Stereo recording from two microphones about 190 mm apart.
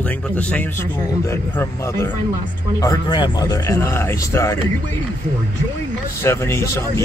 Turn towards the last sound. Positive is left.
turn(degrees=15)  # may be behind; listen again after turning